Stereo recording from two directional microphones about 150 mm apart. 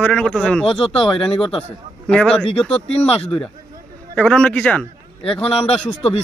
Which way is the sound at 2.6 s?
40° left (ahead or behind).